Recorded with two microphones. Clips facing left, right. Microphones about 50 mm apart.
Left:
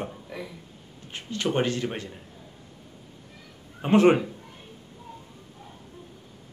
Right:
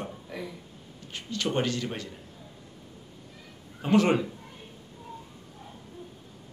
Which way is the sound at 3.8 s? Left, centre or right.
Left.